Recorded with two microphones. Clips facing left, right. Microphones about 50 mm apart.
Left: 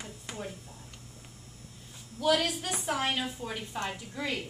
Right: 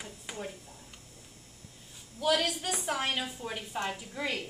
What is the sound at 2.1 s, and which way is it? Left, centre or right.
A woman's voice, centre.